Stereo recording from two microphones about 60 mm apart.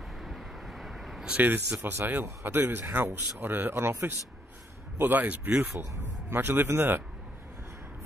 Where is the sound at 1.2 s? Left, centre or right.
Right.